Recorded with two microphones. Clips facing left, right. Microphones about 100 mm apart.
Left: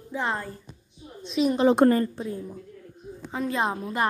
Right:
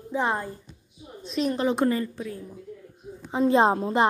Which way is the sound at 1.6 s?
45° left (ahead or behind).